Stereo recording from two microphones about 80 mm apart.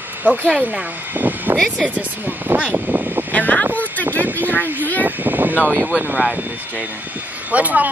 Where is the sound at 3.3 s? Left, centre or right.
Left.